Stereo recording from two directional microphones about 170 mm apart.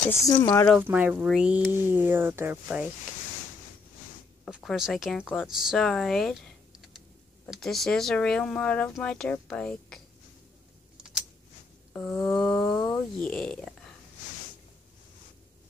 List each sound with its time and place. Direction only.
0.1 s speech: 20° left (ahead or behind)
0.7 s speech: 10° right (ahead or behind)
4.5 s speech: 5° right (ahead or behind)
7.4 s speech: centre (ahead or behind)
11.9 s speech: 10° left (ahead or behind)